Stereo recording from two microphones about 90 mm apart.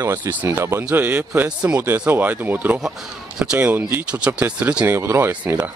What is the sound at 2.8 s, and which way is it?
Speech, 5° right (ahead or behind).